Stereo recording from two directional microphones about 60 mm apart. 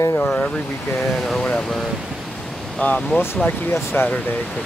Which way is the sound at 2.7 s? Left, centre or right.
Centre.